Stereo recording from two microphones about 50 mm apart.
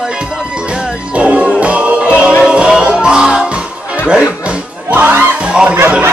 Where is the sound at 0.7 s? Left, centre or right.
Centre.